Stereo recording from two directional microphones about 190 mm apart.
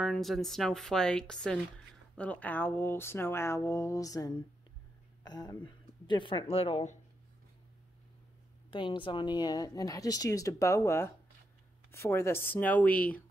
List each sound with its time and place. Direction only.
0.0 s a woman's voice: centre (ahead or behind); by 7.0 s 35° left (ahead or behind)
8.6 s speech: 25° left (ahead or behind); by 13.2 s 10° left (ahead or behind)